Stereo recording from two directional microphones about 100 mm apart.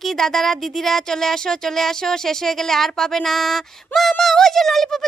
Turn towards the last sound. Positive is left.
turn(degrees=5)  # may be behind; listen again after turning